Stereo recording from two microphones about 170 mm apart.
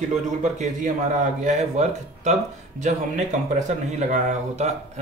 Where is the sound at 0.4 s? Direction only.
45° right (ahead or behind).